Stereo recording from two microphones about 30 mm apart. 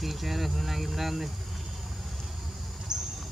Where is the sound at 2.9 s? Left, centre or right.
Right.